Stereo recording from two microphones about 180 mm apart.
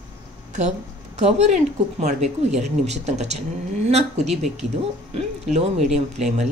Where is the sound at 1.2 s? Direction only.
40° right (ahead or behind).